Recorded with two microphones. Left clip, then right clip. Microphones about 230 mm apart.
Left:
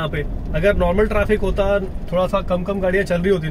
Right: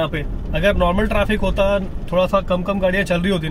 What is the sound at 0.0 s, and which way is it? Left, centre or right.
Speech, right.